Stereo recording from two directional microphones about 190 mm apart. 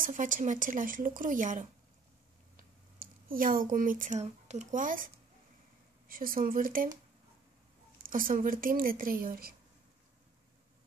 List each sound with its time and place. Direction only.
0.0 s speech: 45° right (ahead or behind)
6.0 s speech: 50° right (ahead or behind)
8.0 s speech: 45° right (ahead or behind)